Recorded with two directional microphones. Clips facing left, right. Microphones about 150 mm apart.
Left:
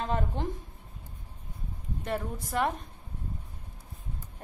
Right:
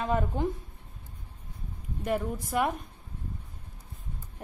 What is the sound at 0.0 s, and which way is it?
Speech, 5° right (ahead or behind).